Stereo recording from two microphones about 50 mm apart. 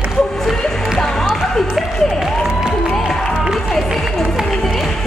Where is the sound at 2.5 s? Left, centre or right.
Centre.